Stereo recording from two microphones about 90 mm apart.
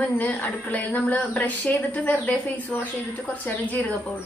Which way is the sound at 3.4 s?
15° left (ahead or behind).